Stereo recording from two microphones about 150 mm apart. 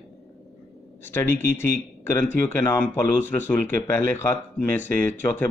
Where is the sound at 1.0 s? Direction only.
15° left (ahead or behind).